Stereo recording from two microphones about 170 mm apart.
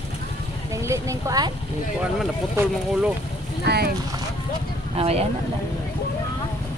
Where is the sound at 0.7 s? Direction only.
15° right (ahead or behind).